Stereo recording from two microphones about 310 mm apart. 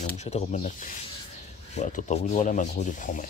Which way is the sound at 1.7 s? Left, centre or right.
Left.